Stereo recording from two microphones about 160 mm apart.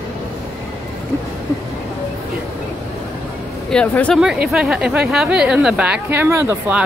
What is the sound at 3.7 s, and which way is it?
Speech, 5° left (ahead or behind).